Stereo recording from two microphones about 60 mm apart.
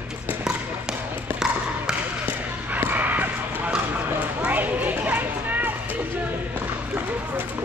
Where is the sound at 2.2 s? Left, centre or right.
Right.